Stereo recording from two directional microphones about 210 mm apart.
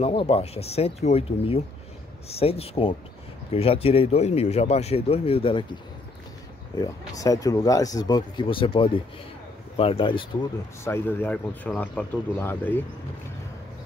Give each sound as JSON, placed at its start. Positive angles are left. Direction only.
{"t": 0.0, "sound": "speech", "side_deg": 25}
{"t": 6.8, "sound": "speech", "side_deg": 15}
{"t": 10.8, "sound": "speech", "side_deg": 10}